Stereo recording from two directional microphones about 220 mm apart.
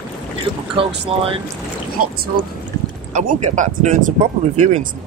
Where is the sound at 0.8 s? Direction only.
25° right (ahead or behind).